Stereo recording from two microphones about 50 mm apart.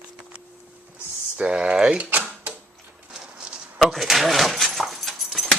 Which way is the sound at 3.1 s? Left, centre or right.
Centre.